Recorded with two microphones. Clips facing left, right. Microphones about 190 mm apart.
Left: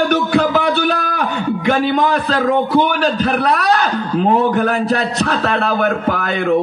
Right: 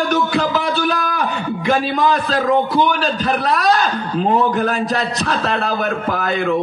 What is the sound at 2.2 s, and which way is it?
A man's voice, 55° left (ahead or behind).